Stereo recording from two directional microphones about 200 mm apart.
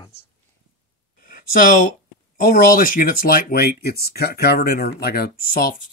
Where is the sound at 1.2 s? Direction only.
45° left (ahead or behind).